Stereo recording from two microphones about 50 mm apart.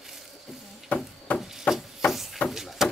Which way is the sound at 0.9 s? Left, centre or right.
Left.